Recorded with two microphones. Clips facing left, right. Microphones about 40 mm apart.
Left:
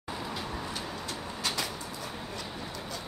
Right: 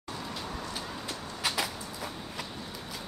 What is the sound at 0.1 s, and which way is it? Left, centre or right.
Vehicle, centre.